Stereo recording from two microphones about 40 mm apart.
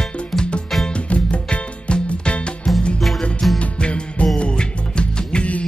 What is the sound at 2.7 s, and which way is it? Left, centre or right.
Music, centre.